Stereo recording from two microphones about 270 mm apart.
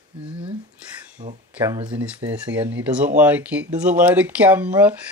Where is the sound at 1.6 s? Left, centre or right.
Centre.